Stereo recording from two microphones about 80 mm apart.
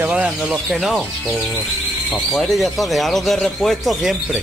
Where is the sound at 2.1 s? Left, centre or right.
Centre.